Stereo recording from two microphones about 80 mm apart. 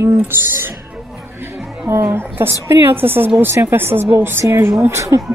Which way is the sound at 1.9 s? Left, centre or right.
Right.